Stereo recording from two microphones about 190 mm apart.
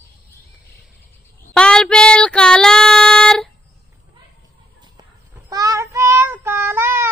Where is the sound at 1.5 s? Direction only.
5° left (ahead or behind).